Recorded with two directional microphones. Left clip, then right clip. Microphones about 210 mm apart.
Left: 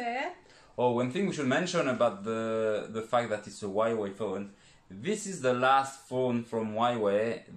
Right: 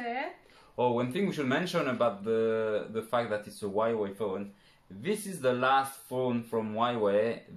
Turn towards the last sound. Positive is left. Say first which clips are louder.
# even
turn(degrees=-10)  # may be behind; listen again after turning